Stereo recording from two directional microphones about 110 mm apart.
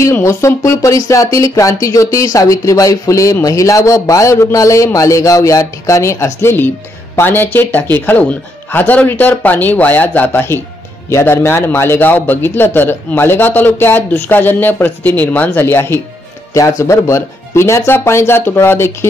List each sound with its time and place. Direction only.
0.0 s a man's voice: 25° left (ahead or behind)